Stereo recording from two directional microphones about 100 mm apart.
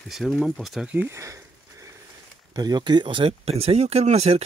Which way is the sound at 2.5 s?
45° right (ahead or behind).